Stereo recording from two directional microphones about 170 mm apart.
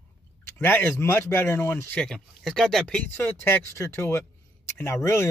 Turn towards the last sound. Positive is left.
turn(degrees=15)  # may be behind; listen again after turning